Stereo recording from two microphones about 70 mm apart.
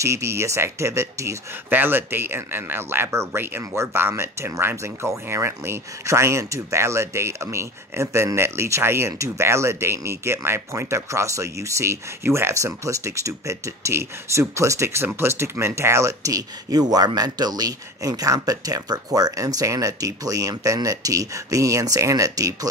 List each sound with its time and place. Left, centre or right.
0.0 s speech: right
1.7 s speech: right